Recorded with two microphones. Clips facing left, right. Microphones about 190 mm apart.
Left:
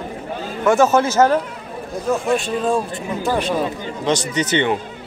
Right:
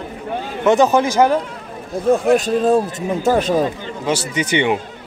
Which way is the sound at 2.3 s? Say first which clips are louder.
Right 5 dB; 40° right (ahead or behind).